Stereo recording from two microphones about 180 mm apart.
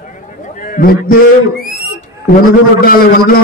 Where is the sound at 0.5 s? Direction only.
50° left (ahead or behind).